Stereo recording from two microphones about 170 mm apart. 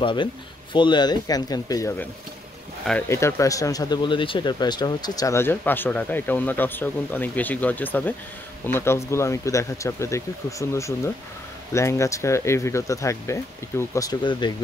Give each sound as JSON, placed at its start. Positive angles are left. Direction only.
{"t": 0.0, "sound": "speech", "side_deg": 30}
{"t": 3.1, "sound": "speech", "side_deg": 15}